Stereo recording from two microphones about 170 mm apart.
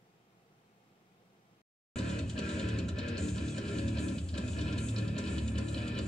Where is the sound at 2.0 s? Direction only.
5° left (ahead or behind).